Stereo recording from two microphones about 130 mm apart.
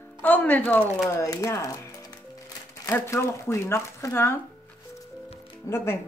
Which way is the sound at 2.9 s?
20° left (ahead or behind).